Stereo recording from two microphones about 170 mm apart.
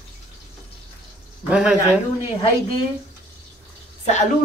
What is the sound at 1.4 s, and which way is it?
Speech, 5° right (ahead or behind).